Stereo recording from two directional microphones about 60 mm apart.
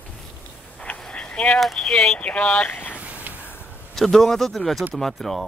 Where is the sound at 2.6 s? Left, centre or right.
Left.